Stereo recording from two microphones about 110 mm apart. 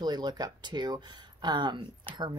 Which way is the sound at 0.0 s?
40° right (ahead or behind).